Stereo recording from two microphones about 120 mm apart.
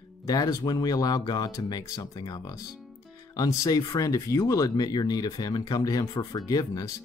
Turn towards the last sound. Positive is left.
turn(degrees=30)  # may be behind; listen again after turning